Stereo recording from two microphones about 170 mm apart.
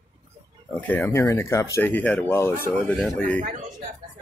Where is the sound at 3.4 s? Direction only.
50° right (ahead or behind).